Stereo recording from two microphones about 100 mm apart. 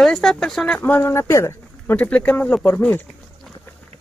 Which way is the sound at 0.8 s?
20° left (ahead or behind).